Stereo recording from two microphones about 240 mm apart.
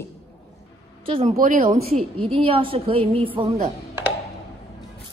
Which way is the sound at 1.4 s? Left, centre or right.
Right.